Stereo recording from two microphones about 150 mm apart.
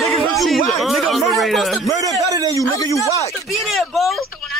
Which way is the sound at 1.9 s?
25° right (ahead or behind).